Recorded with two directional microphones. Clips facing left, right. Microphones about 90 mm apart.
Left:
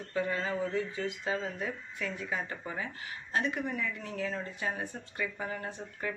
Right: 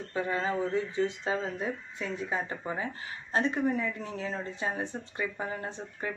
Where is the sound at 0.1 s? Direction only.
25° right (ahead or behind).